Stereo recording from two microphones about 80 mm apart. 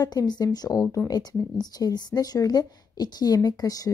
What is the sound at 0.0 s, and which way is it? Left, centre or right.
A woman's voice, left.